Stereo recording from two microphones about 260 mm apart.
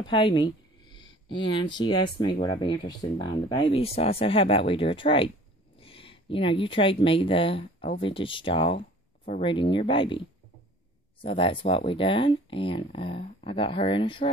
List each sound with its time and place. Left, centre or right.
0.0 s speech: centre